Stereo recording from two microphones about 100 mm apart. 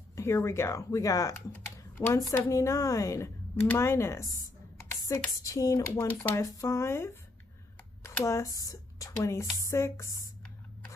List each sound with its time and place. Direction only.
0.1 s speech: 30° left (ahead or behind)
1.5 s typing: 15° left (ahead or behind)
2.1 s speech: 35° left (ahead or behind)